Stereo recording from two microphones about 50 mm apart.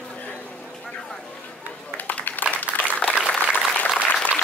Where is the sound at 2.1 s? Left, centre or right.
Left.